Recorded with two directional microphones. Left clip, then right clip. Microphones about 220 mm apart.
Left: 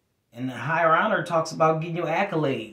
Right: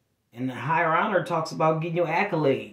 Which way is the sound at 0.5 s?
15° left (ahead or behind).